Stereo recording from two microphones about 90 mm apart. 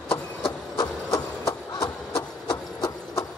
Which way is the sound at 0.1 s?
25° left (ahead or behind).